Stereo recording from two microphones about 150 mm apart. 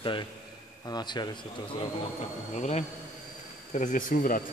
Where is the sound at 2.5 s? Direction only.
55° left (ahead or behind).